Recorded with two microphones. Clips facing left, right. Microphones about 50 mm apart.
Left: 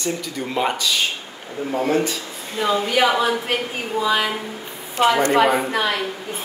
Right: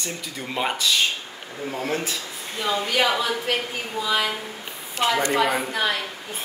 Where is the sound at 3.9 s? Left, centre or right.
Left.